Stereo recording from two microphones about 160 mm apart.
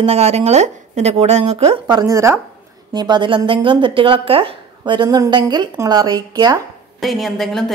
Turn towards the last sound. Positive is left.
turn(degrees=0)  # may be behind; listen again after turning